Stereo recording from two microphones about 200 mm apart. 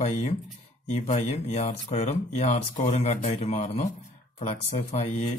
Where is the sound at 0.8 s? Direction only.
35° left (ahead or behind).